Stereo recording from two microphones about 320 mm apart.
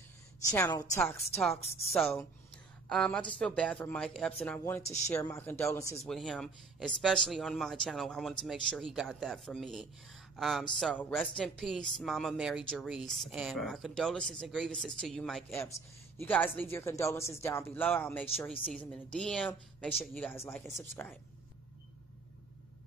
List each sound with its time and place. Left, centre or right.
0.5 s speech: centre
4.8 s speech: left
5.1 s speech: centre